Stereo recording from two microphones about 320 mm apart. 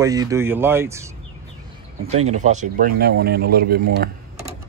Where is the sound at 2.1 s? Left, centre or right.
Right.